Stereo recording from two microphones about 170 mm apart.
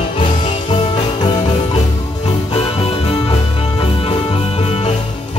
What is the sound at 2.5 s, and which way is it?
Music, 35° left (ahead or behind).